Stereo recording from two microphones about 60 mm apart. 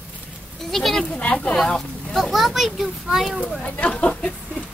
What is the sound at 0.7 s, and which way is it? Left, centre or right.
A child's voice, centre.